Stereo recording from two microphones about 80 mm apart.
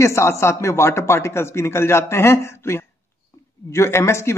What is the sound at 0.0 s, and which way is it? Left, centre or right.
A man's voice, left.